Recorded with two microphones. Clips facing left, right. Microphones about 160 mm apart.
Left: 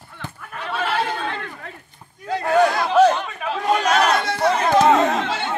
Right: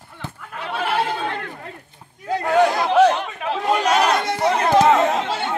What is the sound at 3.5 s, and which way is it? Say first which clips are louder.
Chatter: even; 5° right (ahead or behind).